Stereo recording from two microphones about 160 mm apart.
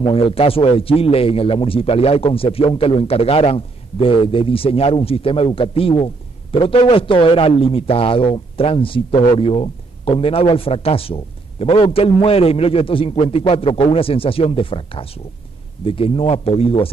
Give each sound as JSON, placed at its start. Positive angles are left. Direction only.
{"t": 0.0, "sound": "speech", "side_deg": 35}